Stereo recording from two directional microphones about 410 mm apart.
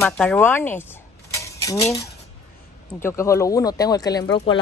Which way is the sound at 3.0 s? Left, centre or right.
Centre.